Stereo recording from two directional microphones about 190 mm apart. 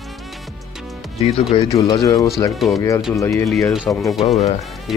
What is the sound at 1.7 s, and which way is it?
Speech, 15° left (ahead or behind).